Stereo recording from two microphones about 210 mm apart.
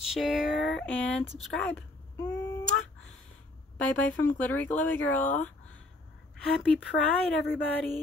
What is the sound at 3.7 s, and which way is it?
Speech, 5° left (ahead or behind).